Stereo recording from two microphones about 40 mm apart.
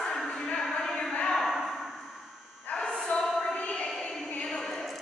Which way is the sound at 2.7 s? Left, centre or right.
Left.